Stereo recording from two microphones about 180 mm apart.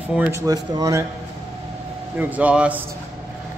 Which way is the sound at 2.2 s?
10° right (ahead or behind).